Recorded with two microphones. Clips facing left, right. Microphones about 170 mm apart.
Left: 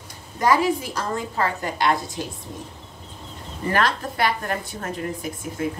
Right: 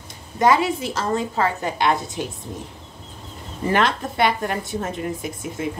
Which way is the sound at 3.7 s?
20° right (ahead or behind).